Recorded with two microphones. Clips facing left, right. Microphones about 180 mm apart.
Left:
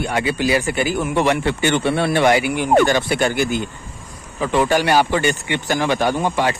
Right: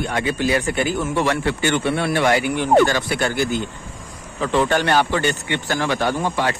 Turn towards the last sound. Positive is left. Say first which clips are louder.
# left 2 dB
turn(degrees=15)  # may be behind; listen again after turning